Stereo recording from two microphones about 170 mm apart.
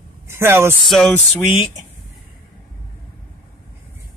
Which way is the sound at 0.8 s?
Centre (ahead or behind).